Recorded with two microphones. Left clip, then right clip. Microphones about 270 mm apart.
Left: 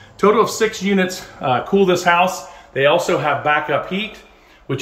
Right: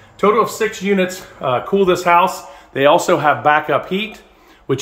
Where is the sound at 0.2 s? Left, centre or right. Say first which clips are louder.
Even; centre.